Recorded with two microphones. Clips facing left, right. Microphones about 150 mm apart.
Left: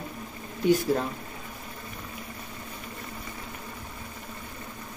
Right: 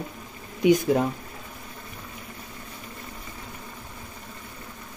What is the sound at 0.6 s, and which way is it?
Speech, 15° right (ahead or behind).